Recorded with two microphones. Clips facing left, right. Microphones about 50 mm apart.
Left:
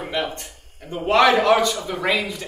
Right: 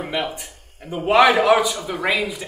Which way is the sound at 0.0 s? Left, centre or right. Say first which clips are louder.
Right 1 dB; centre.